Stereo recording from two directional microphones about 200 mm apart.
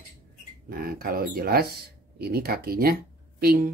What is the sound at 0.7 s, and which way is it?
Speech, 50° right (ahead or behind).